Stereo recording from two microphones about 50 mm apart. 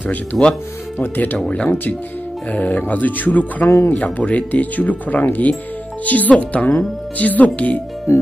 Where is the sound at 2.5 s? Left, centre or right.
Left.